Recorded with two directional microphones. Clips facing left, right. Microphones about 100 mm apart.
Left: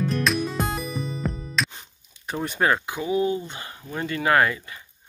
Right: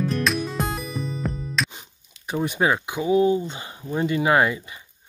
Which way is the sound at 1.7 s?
10° right (ahead or behind).